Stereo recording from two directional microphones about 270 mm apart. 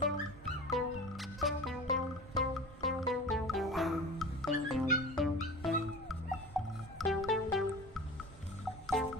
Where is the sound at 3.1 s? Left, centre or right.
Centre.